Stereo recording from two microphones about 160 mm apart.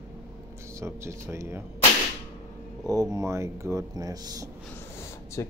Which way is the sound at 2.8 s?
20° right (ahead or behind).